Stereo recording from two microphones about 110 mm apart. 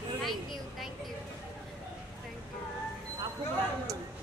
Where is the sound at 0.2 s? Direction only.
Centre (ahead or behind).